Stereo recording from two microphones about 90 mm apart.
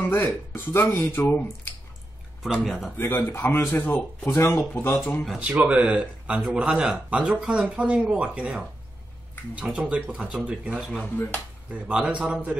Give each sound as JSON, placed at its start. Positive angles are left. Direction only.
{"t": 0.0, "sound": "speech", "side_deg": 25}
{"t": 2.4, "sound": "speech", "side_deg": 0}
{"t": 3.0, "sound": "speech", "side_deg": 25}
{"t": 5.4, "sound": "speech", "side_deg": -15}
{"t": 11.0, "sound": "speech", "side_deg": 20}
{"t": 12.2, "sound": "speech", "side_deg": -15}